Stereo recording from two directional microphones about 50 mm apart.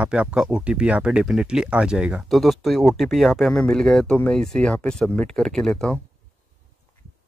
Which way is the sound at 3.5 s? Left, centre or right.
Centre.